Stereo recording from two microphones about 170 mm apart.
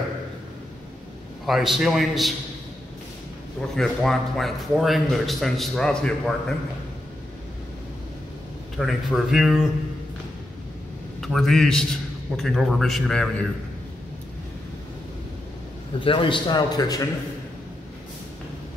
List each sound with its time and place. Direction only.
1.4 s a man's voice: centre (ahead or behind)
3.7 s a man's voice: centre (ahead or behind)
8.7 s a man's voice: centre (ahead or behind)
11.1 s a man's voice: centre (ahead or behind)
16.0 s a man's voice: 30° left (ahead or behind)